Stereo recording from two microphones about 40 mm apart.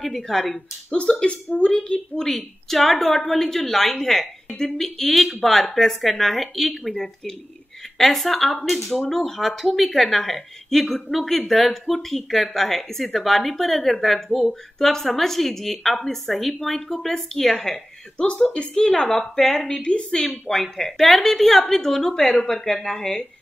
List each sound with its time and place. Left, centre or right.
0.0 s a woman's voice: centre
0.9 s a woman's voice: left
2.2 s a woman's voice: centre
18.1 s a woman's voice: left
18.9 s a woman's voice: centre
19.8 s a woman's voice: left